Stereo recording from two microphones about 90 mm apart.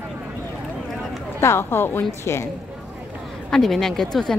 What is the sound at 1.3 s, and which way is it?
A woman's voice, 30° left (ahead or behind).